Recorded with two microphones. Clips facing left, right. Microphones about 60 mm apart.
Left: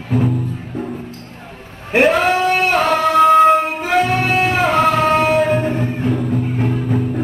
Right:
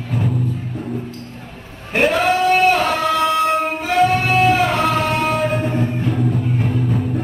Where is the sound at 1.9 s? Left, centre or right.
Left.